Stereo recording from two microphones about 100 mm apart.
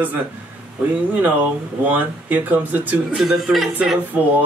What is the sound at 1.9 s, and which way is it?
A man's voice, 15° right (ahead or behind).